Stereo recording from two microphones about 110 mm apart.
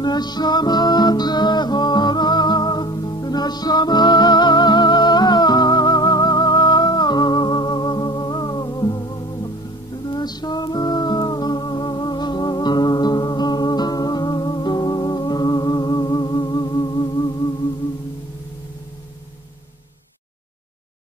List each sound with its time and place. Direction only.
0.0 s music: 40° left (ahead or behind)